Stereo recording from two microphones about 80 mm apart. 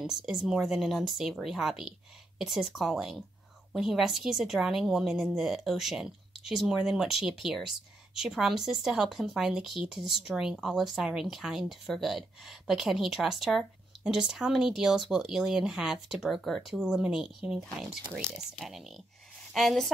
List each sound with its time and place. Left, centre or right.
0.0 s a woman's voice: centre